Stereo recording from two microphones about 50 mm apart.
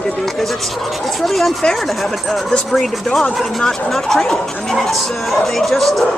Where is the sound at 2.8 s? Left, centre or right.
Centre.